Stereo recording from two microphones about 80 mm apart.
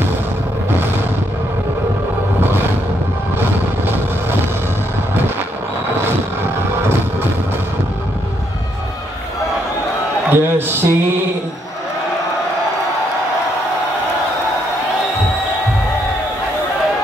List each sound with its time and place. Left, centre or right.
10.3 s a man's voice: right